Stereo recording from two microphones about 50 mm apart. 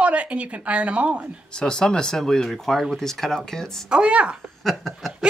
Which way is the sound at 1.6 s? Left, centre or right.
Centre.